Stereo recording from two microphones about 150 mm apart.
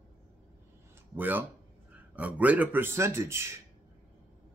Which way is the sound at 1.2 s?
10° right (ahead or behind).